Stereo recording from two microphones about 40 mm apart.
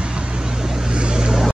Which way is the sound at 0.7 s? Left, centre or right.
Right.